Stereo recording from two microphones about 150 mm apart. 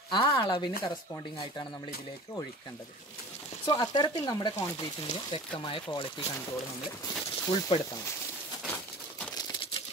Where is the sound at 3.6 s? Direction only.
25° left (ahead or behind).